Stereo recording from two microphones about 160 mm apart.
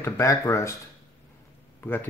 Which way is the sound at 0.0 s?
20° left (ahead or behind).